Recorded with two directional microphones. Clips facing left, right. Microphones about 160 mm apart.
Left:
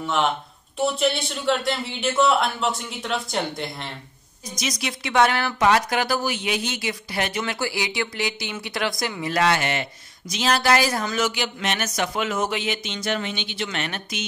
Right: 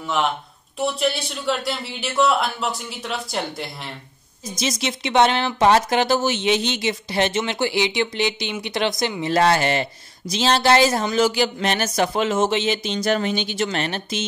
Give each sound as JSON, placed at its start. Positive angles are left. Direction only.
{"t": 0.0, "sound": "speech", "side_deg": 0}
{"t": 4.6, "sound": "speech", "side_deg": -25}